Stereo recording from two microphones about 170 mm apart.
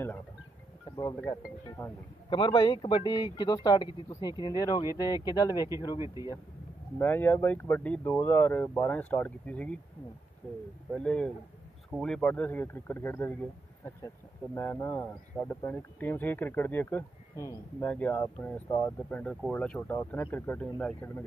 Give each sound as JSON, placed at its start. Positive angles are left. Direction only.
{"t": 0.9, "sound": "speech", "side_deg": 25}
{"t": 5.9, "sound": "speech", "side_deg": -20}
{"t": 7.0, "sound": "speech", "side_deg": 10}
{"t": 10.9, "sound": "speech", "side_deg": 5}